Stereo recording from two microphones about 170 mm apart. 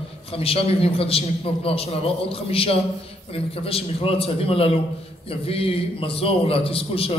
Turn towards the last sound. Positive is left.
turn(degrees=35)  # may be behind; listen again after turning